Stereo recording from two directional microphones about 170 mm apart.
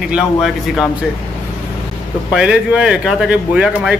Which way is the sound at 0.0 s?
5° right (ahead or behind).